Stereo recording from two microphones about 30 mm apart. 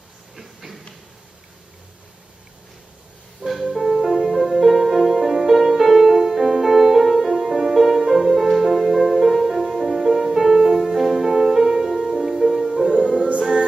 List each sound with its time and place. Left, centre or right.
0.4 s a sound: centre
3.4 s music: centre
12.9 s music: right